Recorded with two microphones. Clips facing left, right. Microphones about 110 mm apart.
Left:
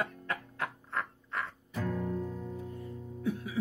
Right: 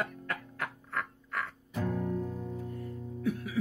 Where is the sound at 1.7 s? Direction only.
15° right (ahead or behind).